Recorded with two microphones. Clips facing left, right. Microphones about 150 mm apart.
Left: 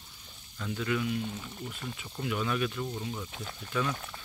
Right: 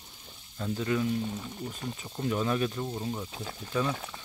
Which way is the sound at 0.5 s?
30° right (ahead or behind).